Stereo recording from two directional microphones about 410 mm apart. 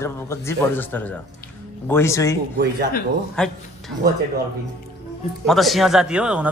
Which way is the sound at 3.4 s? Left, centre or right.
Centre.